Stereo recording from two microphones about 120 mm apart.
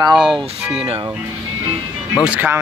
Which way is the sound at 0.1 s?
Centre (ahead or behind).